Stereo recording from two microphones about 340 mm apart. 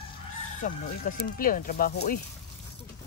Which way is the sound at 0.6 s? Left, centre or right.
Left.